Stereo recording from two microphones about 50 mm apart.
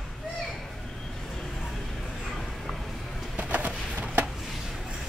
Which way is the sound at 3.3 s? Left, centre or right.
Right.